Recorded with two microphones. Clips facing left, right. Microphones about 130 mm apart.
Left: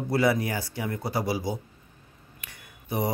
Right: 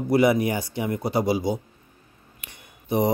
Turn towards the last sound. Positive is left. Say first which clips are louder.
# right 6 dB
turn(degrees=-20)  # may be behind; listen again after turning